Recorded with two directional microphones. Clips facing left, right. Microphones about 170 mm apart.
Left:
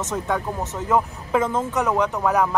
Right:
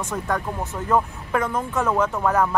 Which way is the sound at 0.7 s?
20° left (ahead or behind).